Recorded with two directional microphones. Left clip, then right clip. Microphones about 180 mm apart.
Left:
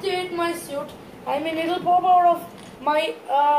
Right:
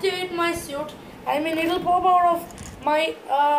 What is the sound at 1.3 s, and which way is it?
A man's voice, 25° right (ahead or behind).